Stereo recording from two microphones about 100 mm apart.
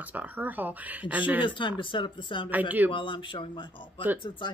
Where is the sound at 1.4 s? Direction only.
55° left (ahead or behind).